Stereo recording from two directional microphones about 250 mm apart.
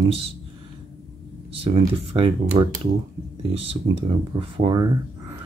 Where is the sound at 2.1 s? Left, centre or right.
Right.